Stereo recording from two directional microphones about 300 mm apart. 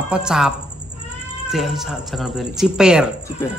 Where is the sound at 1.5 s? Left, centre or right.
Centre.